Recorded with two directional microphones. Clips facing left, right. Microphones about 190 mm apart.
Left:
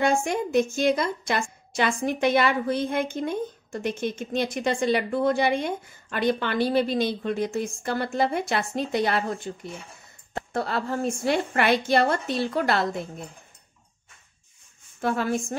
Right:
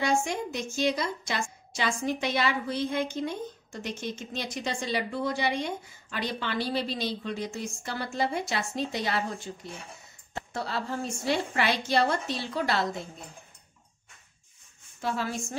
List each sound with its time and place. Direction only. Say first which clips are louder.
0.0 s a woman's voice: left 4 dB; 55° left (ahead or behind)
15.0 s a woman's voice: left 6 dB; 55° left (ahead or behind)